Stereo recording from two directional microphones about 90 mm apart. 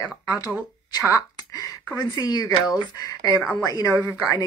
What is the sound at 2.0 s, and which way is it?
Speech, 50° left (ahead or behind).